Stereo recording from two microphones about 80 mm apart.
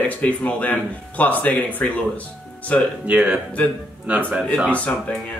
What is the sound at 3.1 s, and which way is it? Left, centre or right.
Speech, centre.